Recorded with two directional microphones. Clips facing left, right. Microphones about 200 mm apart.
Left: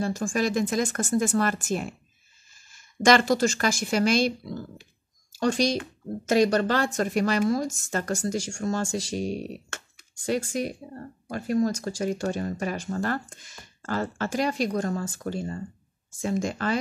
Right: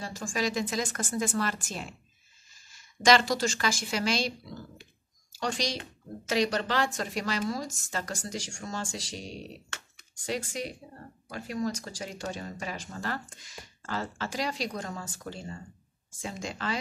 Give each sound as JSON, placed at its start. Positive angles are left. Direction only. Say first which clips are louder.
{"t": 0.0, "sound": "a woman's voice", "louder": "left 6 dB", "side_deg": 50}
{"t": 5.4, "sound": "a woman's voice", "louder": "left 8 dB", "side_deg": 50}